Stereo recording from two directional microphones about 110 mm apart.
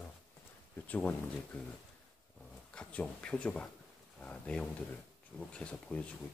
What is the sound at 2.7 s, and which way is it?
Speech, 10° left (ahead or behind).